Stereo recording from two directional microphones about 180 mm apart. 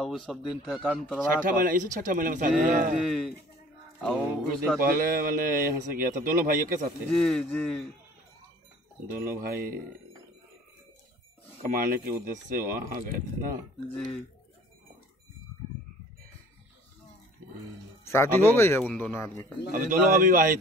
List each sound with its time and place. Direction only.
0.0 s a man's voice: centre (ahead or behind)
1.4 s speech: 50° right (ahead or behind)
3.0 s a man's voice: centre (ahead or behind)
4.8 s speech: 55° right (ahead or behind)
7.1 s a man's voice: 5° left (ahead or behind)
9.2 s speech: 55° right (ahead or behind)
11.6 s speech: 55° right (ahead or behind)
13.9 s a man's voice: 5° left (ahead or behind)
18.1 s a man's voice: 15° left (ahead or behind)
19.7 s speech: 50° right (ahead or behind)